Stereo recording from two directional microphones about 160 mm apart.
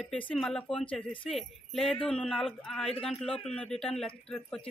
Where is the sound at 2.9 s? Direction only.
40° left (ahead or behind).